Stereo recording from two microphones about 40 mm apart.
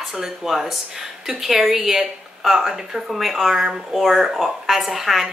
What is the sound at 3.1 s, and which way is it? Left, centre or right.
A woman's voice, centre.